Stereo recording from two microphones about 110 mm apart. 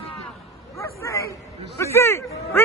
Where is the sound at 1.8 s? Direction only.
25° left (ahead or behind).